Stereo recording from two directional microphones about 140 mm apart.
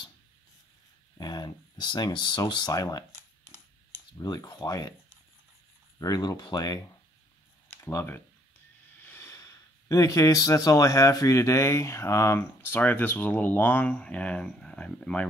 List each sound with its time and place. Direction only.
1.1 s speech: 30° left (ahead or behind)
4.2 s speech: 30° left (ahead or behind)
5.9 s speech: 25° left (ahead or behind)
7.7 s speech: 15° left (ahead or behind)